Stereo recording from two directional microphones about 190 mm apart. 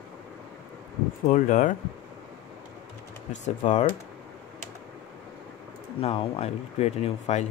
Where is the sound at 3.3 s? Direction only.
40° left (ahead or behind).